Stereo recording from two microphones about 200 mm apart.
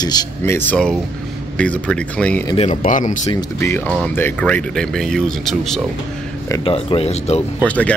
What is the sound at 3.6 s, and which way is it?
Speech, 5° left (ahead or behind).